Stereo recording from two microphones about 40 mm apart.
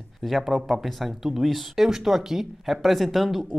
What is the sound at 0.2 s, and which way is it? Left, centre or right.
A woman's voice, centre.